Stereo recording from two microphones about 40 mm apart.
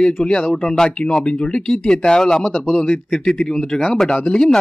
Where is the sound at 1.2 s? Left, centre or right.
Left.